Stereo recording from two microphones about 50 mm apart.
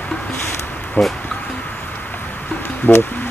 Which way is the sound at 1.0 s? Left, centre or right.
Left.